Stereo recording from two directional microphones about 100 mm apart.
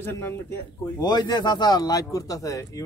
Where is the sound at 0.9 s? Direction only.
45° left (ahead or behind).